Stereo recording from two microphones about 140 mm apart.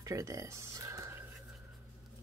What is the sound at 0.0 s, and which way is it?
Speech, 20° right (ahead or behind).